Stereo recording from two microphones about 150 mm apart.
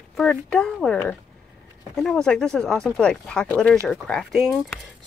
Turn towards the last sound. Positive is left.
turn(degrees=-5)  # may be behind; listen again after turning